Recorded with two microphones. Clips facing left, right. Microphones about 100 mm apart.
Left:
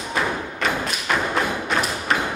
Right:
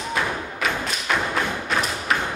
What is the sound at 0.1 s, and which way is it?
Thump, centre (ahead or behind).